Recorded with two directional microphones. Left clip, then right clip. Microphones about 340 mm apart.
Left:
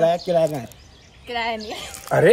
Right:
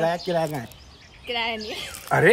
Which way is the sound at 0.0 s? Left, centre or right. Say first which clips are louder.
Left 5 dB; centre.